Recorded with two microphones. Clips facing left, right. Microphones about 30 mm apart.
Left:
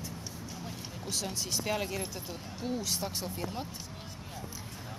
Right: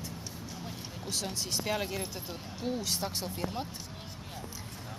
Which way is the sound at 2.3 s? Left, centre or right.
Centre.